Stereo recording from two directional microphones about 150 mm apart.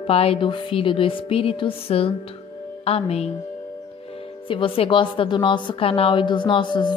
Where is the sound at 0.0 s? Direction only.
40° left (ahead or behind).